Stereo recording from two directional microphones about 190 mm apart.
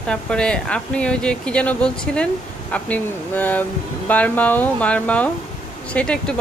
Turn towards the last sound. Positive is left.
turn(degrees=5)  # may be behind; listen again after turning